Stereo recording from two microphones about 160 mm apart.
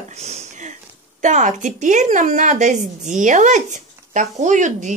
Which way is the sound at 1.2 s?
50° right (ahead or behind).